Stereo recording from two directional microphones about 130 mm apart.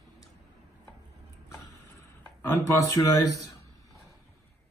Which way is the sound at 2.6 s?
25° left (ahead or behind).